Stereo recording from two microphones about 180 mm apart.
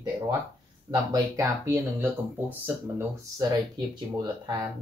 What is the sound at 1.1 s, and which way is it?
Speech, 20° right (ahead or behind).